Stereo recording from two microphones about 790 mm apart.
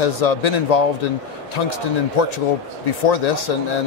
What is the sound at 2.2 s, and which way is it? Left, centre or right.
Speech, left.